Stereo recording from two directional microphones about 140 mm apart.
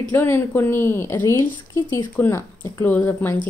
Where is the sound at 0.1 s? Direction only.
15° left (ahead or behind).